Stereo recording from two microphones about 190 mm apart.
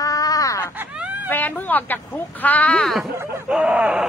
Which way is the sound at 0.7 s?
10° right (ahead or behind).